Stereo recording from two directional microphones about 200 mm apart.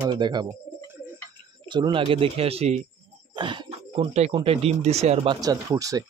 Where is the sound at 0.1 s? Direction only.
20° right (ahead or behind).